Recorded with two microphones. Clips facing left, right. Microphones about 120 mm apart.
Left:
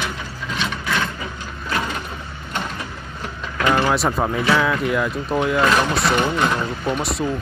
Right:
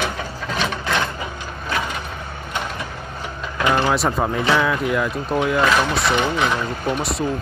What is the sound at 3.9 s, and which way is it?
Speech, centre (ahead or behind).